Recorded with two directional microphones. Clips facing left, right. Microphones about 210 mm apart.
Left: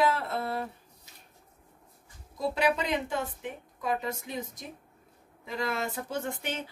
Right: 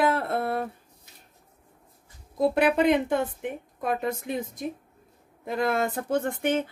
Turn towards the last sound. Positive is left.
turn(degrees=-55)  # may be behind; listen again after turning